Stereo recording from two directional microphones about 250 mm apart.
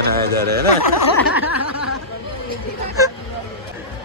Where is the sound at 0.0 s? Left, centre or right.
Right.